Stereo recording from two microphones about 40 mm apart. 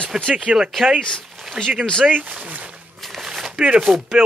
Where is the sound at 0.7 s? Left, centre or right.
Centre.